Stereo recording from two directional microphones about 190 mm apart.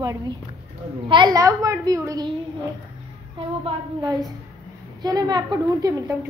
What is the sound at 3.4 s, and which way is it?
Speech, 30° right (ahead or behind).